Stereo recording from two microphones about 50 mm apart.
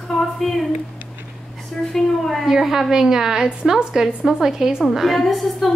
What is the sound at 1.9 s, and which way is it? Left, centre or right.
A woman's voice, centre.